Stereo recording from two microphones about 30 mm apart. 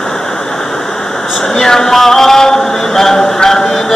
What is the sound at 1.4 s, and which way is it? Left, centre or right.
Chant, centre.